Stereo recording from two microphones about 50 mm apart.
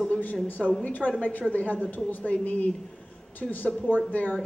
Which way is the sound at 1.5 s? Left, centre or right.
Left.